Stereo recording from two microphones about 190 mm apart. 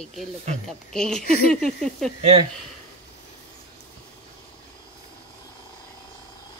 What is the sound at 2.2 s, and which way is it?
Speech, 35° right (ahead or behind).